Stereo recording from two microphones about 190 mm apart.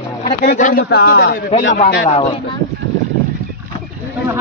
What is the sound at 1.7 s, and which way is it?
Speech, 40° left (ahead or behind).